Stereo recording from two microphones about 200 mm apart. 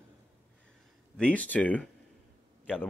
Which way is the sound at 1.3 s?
5° left (ahead or behind).